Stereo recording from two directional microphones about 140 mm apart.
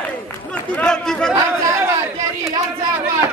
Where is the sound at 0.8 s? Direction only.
5° left (ahead or behind).